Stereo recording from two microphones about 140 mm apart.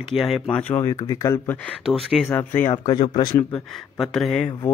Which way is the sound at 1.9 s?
5° left (ahead or behind).